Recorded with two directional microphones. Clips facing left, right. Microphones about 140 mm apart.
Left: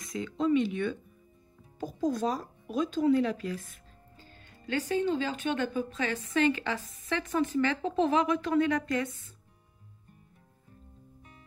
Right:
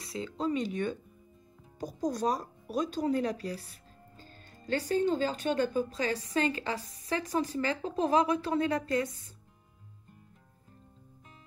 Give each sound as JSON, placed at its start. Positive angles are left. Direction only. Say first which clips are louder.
{"t": 0.0, "sound": "speech", "louder": "left 3 dB", "side_deg": -30}